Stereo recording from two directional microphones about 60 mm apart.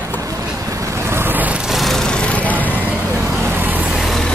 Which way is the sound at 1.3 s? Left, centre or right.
Right.